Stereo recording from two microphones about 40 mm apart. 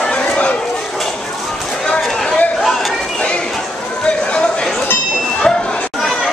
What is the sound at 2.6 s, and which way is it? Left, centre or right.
Chatter, centre.